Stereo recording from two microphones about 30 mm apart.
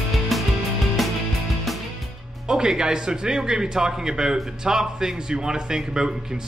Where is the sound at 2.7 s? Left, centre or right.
Right.